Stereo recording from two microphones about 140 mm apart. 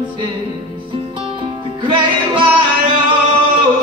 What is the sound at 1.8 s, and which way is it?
Music, 35° right (ahead or behind).